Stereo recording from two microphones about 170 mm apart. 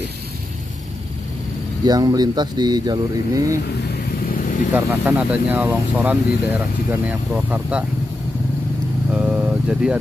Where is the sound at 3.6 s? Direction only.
80° left; by 4.5 s 55° left (ahead or behind).